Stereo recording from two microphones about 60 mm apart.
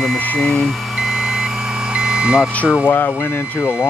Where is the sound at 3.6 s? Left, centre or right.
Centre.